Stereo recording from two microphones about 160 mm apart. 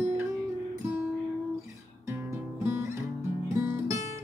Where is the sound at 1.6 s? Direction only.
15° right (ahead or behind).